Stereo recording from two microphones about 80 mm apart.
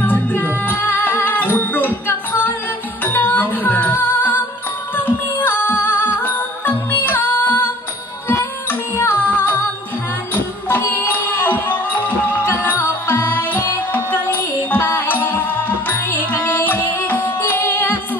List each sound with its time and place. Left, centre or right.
0.0 s music: left
3.0 s music: left
10.7 s music: left